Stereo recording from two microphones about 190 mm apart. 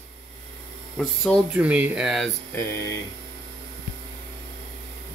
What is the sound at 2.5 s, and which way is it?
Speech, 15° left (ahead or behind).